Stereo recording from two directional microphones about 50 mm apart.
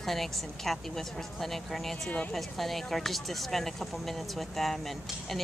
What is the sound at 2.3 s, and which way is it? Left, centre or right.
Speech, centre.